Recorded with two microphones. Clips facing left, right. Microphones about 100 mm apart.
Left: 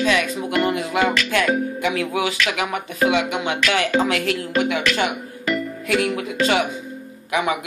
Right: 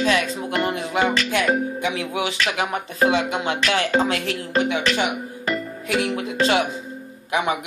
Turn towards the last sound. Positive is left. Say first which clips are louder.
# left 1 dB
turn(degrees=-25)  # may be behind; listen again after turning